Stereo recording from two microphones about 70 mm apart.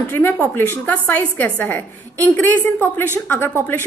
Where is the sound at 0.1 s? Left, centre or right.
Left.